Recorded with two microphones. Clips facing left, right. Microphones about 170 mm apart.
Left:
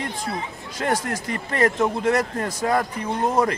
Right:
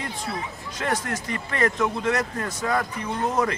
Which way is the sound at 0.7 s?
35° left (ahead or behind).